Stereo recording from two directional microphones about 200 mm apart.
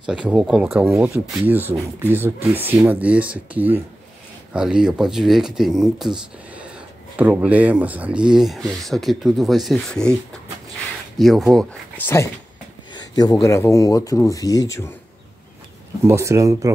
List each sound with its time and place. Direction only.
0.0 s speech: 5° right (ahead or behind)
11.1 s speech: centre (ahead or behind)
12.9 s speech: 20° left (ahead or behind)
16.1 s speech: 15° right (ahead or behind)